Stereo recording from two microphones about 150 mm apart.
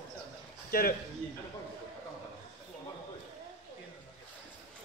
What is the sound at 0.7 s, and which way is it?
Speech, 85° left.